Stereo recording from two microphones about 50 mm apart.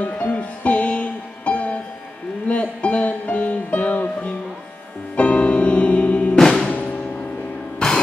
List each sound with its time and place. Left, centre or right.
0.0 s music: left
6.3 s music: centre
7.8 s music: centre